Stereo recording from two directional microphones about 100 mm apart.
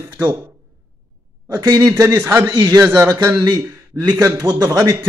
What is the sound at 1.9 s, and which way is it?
Speech, 30° right (ahead or behind).